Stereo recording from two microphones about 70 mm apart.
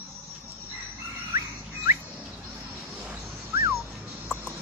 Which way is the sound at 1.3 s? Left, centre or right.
Right.